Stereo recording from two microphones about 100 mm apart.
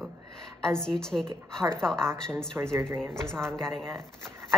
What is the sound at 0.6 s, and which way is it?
Speech, 5° left (ahead or behind).